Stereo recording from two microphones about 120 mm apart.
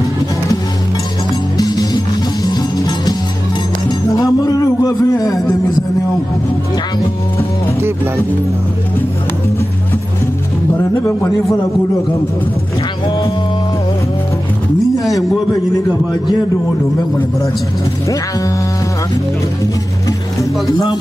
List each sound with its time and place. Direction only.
4.1 s music: 30° left (ahead or behind)
10.8 s a man's voice: 25° left (ahead or behind)
15.7 s a man's voice: 35° left (ahead or behind)
20.7 s a man's voice: 40° left (ahead or behind)